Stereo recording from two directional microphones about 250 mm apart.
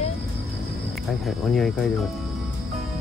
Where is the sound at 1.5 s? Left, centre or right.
Centre.